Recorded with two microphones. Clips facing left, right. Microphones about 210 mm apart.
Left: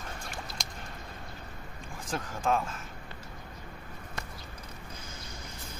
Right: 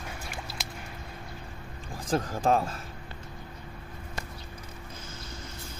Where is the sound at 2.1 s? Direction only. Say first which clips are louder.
Right 5 dB; 35° right (ahead or behind).